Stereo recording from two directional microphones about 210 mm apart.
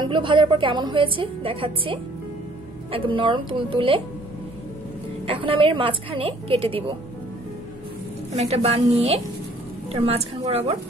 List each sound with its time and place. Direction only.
0.0 s a woman's voice: 25° right (ahead or behind)
5.2 s a woman's voice: 25° right (ahead or behind)
8.4 s a woman's voice: 30° right (ahead or behind)
9.9 s a woman's voice: 30° right (ahead or behind)